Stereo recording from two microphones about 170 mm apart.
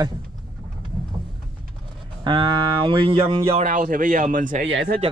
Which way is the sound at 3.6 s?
50° right (ahead or behind).